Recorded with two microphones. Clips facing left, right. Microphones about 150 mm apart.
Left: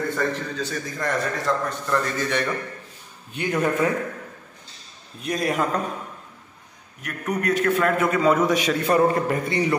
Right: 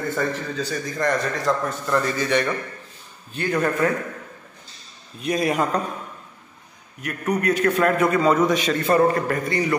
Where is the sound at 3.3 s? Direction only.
15° left (ahead or behind).